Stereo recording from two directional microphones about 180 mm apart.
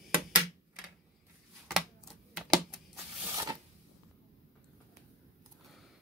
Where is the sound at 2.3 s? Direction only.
Centre (ahead or behind).